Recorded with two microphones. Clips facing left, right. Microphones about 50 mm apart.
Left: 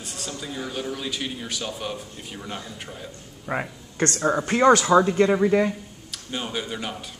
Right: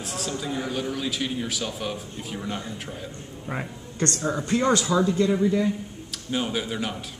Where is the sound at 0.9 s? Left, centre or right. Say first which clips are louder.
Right 3 dB; centre.